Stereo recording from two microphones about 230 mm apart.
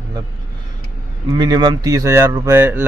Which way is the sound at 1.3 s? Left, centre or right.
Centre.